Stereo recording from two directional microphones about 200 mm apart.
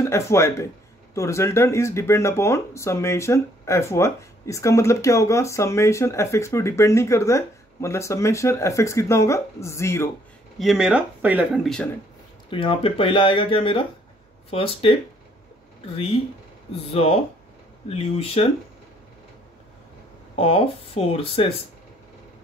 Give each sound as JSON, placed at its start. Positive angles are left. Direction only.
{"t": 0.0, "sound": "speech", "side_deg": 15}
{"t": 10.6, "sound": "speech", "side_deg": 0}
{"t": 12.4, "sound": "speech", "side_deg": 25}
{"t": 16.8, "sound": "speech", "side_deg": 30}
{"t": 20.3, "sound": "speech", "side_deg": 30}